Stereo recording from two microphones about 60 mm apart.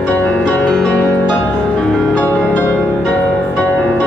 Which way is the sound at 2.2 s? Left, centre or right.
Left.